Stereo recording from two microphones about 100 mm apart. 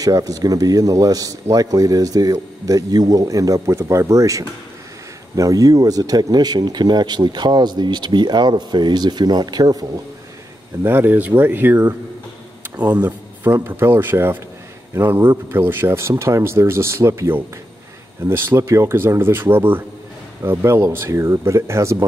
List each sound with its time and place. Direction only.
0.0 s a man's voice: 35° right (ahead or behind)
10.8 s speech: 20° right (ahead or behind)